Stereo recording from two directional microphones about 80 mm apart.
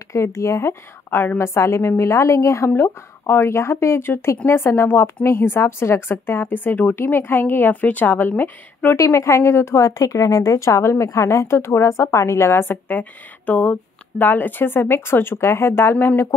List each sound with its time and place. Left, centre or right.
0.1 s speech: left
8.9 s speech: left